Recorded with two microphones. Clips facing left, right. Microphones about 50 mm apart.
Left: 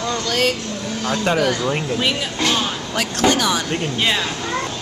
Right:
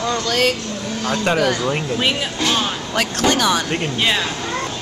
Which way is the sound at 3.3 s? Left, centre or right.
Right.